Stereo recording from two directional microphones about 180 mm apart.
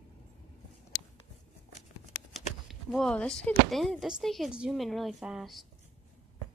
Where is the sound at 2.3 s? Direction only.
Centre (ahead or behind).